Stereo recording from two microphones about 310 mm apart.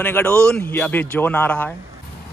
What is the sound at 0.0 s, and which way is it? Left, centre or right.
A man's voice, centre.